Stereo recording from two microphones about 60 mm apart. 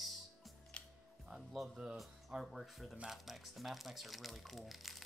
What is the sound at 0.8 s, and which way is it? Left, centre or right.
Music, centre.